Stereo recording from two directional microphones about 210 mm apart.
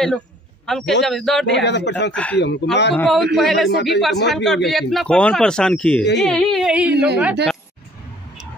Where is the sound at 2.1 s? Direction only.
5° left (ahead or behind).